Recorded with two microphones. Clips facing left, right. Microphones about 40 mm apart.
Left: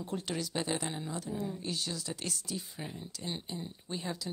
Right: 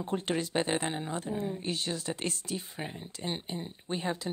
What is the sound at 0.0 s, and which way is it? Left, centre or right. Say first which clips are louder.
Speech: right 5 dB; right.